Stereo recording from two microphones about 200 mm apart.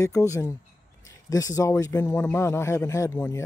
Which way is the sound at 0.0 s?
15° left (ahead or behind).